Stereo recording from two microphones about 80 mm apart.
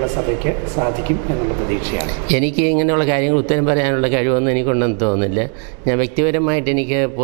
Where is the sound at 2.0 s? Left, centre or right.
Centre.